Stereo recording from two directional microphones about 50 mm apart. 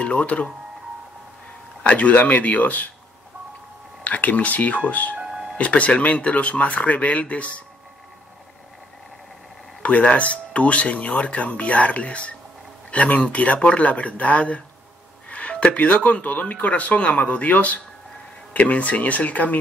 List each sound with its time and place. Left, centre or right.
0.0 s speech: left
1.8 s speech: left
4.0 s speech: left
5.2 s music: centre
5.6 s speech: left
9.8 s speech: left